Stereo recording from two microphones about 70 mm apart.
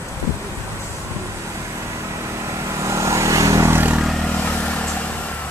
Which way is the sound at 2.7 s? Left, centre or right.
Right.